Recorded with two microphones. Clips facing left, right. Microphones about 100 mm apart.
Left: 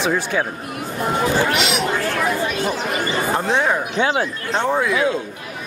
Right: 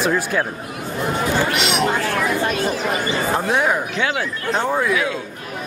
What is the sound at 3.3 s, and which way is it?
Speech, 5° right (ahead or behind).